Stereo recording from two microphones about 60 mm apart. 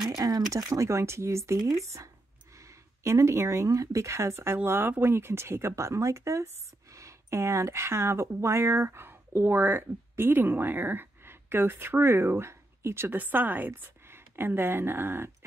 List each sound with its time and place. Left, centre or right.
0.2 s a sound: right
0.7 s speech: right
1.6 s speech: right
3.0 s speech: right
13.2 s a woman's voice: right